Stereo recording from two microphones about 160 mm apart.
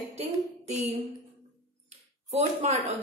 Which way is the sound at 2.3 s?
40° right (ahead or behind).